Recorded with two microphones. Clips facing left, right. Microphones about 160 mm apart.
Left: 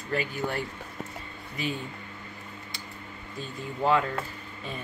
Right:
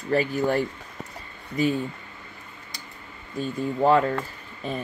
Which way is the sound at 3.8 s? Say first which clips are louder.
Right 5 dB; 40° right (ahead or behind).